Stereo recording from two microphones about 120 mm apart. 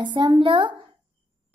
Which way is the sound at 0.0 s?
40° right (ahead or behind).